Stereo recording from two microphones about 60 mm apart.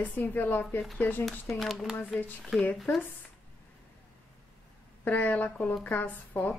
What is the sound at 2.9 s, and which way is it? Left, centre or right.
Speech, left.